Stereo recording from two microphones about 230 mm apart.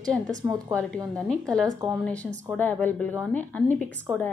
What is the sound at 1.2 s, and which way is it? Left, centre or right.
A woman's voice, centre.